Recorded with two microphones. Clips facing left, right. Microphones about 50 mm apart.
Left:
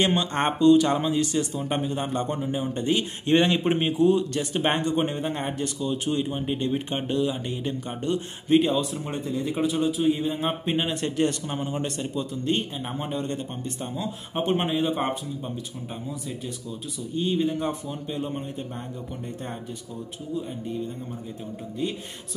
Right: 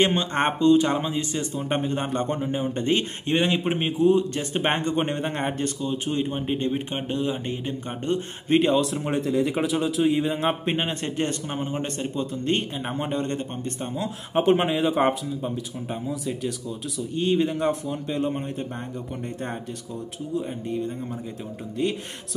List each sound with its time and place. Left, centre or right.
0.0 s speech: right
1.6 s speech: right
3.3 s speech: centre
4.0 s speech: right
5.9 s speech: right
6.7 s speech: centre
7.1 s speech: right
8.9 s speech: right
12.4 s speech: right
13.9 s speech: right
17.1 s speech: right
20.3 s speech: right